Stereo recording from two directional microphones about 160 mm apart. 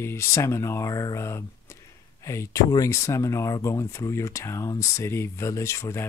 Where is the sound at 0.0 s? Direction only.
15° left (ahead or behind).